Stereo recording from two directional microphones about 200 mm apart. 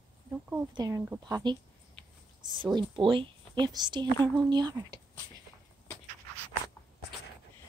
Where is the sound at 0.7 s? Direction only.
15° right (ahead or behind).